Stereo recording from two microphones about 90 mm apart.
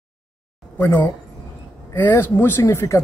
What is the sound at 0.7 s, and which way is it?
A man's voice, 25° left (ahead or behind).